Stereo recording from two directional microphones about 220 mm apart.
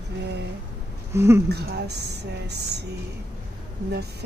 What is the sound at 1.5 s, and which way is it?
A woman's voice, 50° right (ahead or behind).